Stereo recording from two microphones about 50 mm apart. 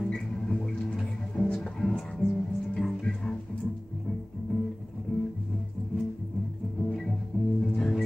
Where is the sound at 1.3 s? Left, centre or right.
Left.